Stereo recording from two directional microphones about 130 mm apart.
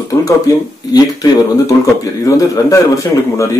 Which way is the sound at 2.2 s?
25° left (ahead or behind).